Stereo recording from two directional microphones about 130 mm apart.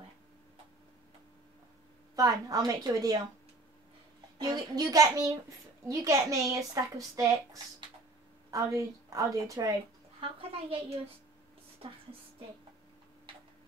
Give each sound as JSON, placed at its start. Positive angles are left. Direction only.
{"t": 2.1, "sound": "speech", "side_deg": -25}
{"t": 4.4, "sound": "speech", "side_deg": -30}
{"t": 10.2, "sound": "a woman's voice", "side_deg": -45}